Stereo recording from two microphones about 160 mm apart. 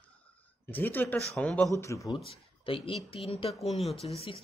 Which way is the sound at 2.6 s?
35° left (ahead or behind).